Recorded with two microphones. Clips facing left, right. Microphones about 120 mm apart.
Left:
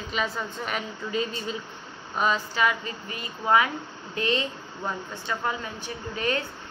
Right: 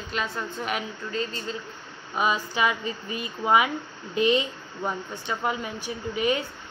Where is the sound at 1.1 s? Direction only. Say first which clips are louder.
Left 2 dB; 15° left (ahead or behind).